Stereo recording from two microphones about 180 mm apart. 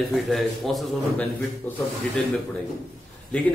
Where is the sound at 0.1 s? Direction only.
Centre (ahead or behind).